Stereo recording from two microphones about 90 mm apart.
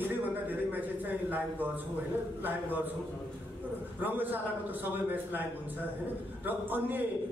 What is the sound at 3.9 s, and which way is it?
A man's voice, 20° right (ahead or behind).